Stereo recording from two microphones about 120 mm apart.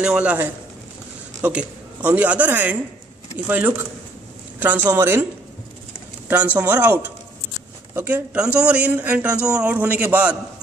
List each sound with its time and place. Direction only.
0.0 s speech: 10° right (ahead or behind)
6.2 s speech: 15° right (ahead or behind)